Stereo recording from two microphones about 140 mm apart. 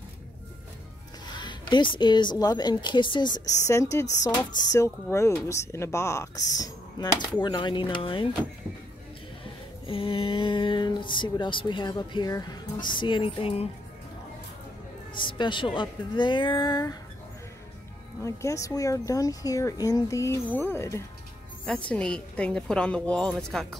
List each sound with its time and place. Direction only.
1.4 s speech: 35° left (ahead or behind)
9.8 s speech: 40° left (ahead or behind)
15.1 s speech: 35° left (ahead or behind)
18.2 s a woman's voice: 20° left (ahead or behind); by 23.8 s centre (ahead or behind)